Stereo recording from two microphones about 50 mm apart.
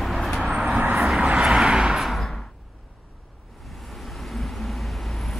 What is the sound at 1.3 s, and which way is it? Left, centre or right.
Vehicle, right.